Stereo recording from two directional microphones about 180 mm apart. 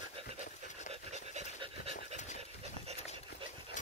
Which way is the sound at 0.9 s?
40° right (ahead or behind).